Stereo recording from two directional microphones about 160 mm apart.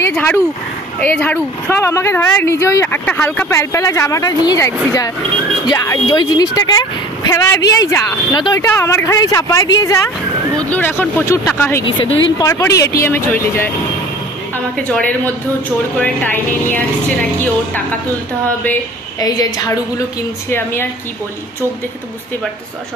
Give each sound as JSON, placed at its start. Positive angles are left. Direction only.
{"t": 0.0, "sound": "a sound", "side_deg": 10}
{"t": 1.0, "sound": "speech", "side_deg": 10}
{"t": 8.6, "sound": "speech", "side_deg": 15}
{"t": 10.6, "sound": "speech", "side_deg": 10}
{"t": 11.8, "sound": "a woman's voice", "side_deg": 30}
{"t": 19.1, "sound": "speech", "side_deg": 25}